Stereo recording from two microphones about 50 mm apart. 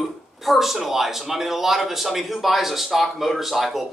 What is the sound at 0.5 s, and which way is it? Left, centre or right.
A man's voice, centre.